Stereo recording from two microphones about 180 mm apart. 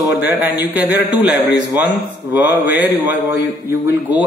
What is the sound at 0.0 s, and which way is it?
Speech, 10° right (ahead or behind).